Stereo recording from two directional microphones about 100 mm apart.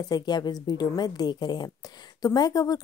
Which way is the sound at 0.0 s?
45° left (ahead or behind).